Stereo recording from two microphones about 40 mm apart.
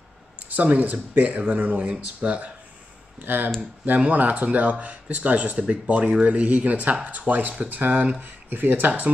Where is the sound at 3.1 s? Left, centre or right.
Right.